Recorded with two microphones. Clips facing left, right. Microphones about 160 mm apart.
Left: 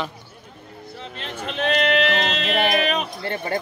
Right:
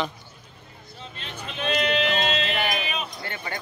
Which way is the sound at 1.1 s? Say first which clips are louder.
Left 7 dB; 70° left (ahead or behind).